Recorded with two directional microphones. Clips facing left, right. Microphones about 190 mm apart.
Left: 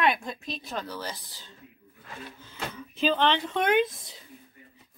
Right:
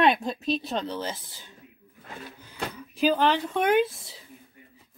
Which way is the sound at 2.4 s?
15° right (ahead or behind).